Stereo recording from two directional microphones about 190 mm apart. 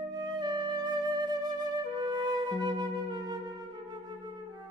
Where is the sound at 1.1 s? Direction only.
20° right (ahead or behind).